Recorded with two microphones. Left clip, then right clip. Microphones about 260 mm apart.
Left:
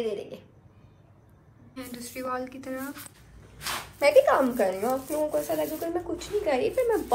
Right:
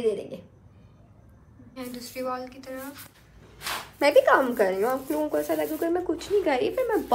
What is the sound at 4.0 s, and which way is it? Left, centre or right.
A woman's voice, right.